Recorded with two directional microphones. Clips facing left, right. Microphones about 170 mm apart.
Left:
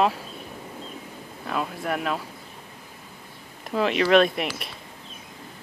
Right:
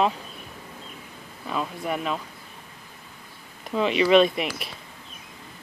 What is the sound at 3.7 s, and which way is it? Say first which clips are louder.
Speech: right 1 dB; centre (ahead or behind).